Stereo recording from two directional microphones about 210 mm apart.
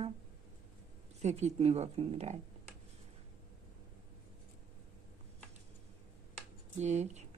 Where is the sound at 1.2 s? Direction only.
30° right (ahead or behind).